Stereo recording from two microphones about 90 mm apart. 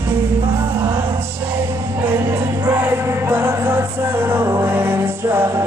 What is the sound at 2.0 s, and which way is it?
Music, 25° right (ahead or behind).